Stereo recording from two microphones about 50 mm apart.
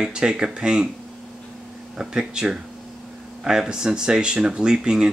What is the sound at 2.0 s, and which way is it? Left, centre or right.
Speech, centre.